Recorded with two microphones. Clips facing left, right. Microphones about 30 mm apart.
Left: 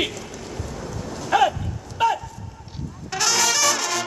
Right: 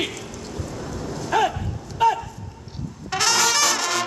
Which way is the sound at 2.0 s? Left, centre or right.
Centre.